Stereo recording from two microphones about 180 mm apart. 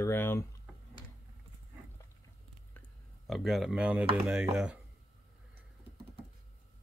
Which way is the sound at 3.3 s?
Centre (ahead or behind).